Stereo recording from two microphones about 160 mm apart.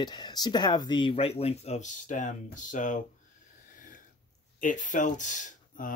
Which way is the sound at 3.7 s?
55° left (ahead or behind).